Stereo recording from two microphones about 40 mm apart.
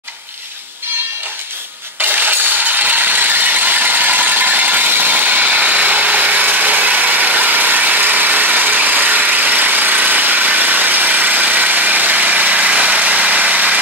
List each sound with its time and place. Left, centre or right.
2.0 s ratchet: right